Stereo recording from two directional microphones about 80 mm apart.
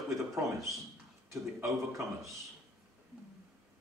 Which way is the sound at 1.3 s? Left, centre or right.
Right.